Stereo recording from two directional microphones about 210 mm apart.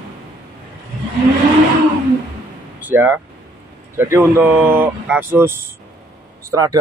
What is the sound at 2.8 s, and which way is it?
Speech, 10° right (ahead or behind).